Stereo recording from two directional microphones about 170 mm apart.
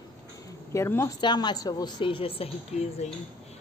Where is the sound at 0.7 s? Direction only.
15° left (ahead or behind).